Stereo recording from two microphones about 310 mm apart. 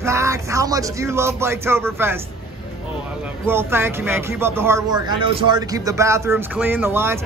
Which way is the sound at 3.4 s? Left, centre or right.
Centre.